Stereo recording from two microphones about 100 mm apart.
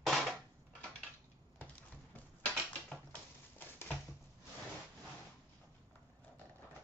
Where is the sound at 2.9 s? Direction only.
20° left (ahead or behind).